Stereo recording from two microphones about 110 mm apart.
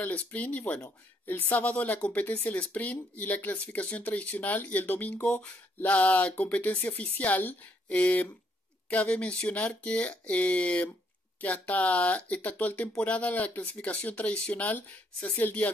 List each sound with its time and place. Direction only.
0.0 s speech: 15° left (ahead or behind)